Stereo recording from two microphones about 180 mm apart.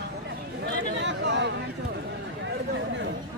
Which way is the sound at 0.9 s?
80° right.